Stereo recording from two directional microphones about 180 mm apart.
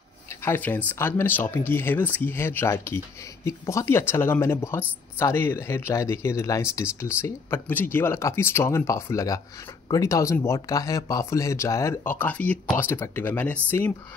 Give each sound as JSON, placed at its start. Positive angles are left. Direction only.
{"t": 0.4, "sound": "speech", "side_deg": 10}